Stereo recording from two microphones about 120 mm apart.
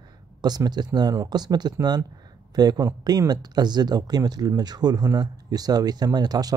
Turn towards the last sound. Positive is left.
turn(degrees=-35)  # may be behind; listen again after turning